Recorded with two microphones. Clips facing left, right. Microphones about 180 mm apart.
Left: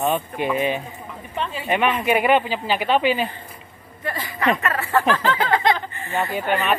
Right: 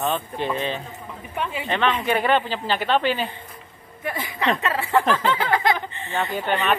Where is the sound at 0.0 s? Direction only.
15° left (ahead or behind).